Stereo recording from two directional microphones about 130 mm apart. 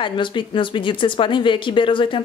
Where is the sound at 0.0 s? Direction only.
40° left (ahead or behind).